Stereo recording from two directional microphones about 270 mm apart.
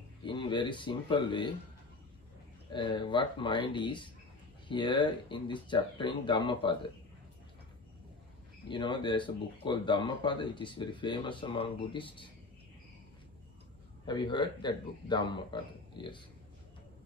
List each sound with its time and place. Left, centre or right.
0.2 s speech: centre
2.7 s speech: centre
8.6 s speech: centre
14.0 s speech: centre